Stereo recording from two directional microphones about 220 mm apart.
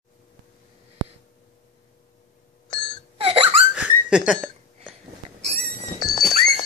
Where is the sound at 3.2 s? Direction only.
25° right (ahead or behind).